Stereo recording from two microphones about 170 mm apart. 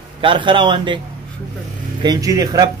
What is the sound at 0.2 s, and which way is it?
Speech, 30° right (ahead or behind).